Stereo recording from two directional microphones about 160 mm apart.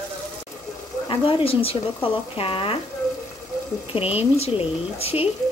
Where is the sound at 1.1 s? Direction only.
35° left (ahead or behind).